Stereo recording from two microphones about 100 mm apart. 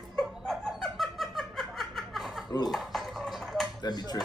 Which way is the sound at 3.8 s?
45° left (ahead or behind).